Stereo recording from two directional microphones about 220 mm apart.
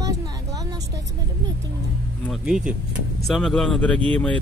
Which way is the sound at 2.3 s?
5° right (ahead or behind).